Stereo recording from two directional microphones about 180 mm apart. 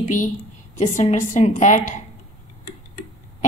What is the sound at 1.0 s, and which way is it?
Speech, 40° left (ahead or behind).